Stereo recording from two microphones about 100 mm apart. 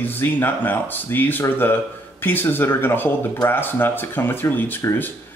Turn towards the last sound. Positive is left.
turn(degrees=20)  # may be behind; listen again after turning